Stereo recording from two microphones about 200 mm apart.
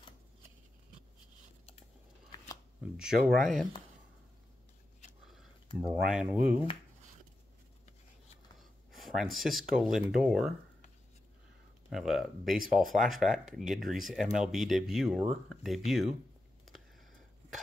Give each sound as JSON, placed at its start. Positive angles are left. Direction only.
{"t": 2.3, "sound": "shuffling cards", "side_deg": 15}
{"t": 2.8, "sound": "speech", "side_deg": -5}
{"t": 6.0, "sound": "speech", "side_deg": -5}
{"t": 8.5, "sound": "gasp", "side_deg": 0}
{"t": 9.8, "sound": "speech", "side_deg": 0}
{"t": 11.9, "sound": "speech", "side_deg": 0}